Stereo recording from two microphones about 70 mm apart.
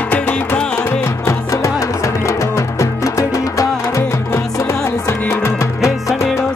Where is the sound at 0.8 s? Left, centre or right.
Left.